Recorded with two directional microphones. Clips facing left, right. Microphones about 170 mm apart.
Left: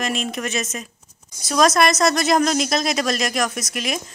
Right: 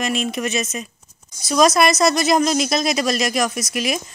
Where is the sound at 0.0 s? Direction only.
Centre (ahead or behind).